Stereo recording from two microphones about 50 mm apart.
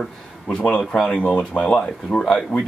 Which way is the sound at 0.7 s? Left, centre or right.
Centre.